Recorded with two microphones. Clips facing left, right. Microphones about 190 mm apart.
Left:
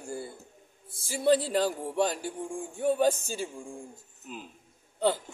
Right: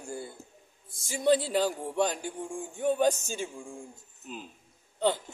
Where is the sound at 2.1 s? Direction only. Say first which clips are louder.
Left 1 dB; 40° left (ahead or behind).